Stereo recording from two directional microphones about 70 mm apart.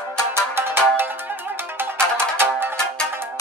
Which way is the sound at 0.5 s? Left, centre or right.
Right.